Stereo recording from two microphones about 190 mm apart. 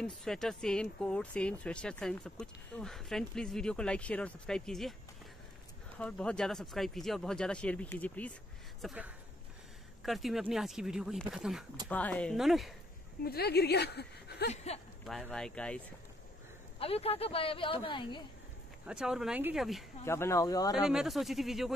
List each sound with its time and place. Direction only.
0.0 s speech: centre (ahead or behind)
5.9 s speech: 5° left (ahead or behind)
8.8 s speech: 5° right (ahead or behind)
11.9 s speech: 10° left (ahead or behind)
13.2 s a woman's voice: 55° left (ahead or behind)
14.5 s speech: 35° left (ahead or behind)
15.0 s speech: 5° left (ahead or behind)
16.8 s speech: 30° left (ahead or behind)
18.9 s speech: 5° right (ahead or behind)
20.1 s speech: 15° left (ahead or behind)
20.7 s speech: 5° right (ahead or behind)